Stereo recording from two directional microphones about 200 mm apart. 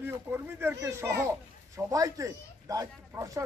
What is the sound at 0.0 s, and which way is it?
A man's voice, 10° right (ahead or behind).